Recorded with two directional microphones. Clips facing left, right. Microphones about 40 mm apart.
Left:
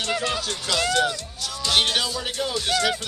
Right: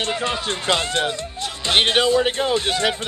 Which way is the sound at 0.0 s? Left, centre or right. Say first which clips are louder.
Right 2 dB; right.